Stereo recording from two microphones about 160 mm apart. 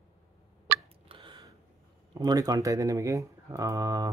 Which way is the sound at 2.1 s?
25° right (ahead or behind).